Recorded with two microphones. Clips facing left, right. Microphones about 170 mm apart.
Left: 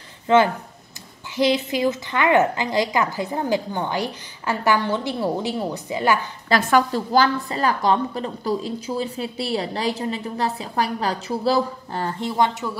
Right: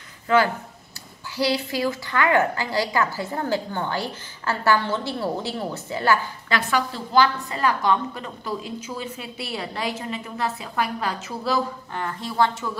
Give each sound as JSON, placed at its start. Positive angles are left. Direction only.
{"t": 0.3, "sound": "a woman's voice", "side_deg": 25}
{"t": 6.5, "sound": "a woman's voice", "side_deg": 45}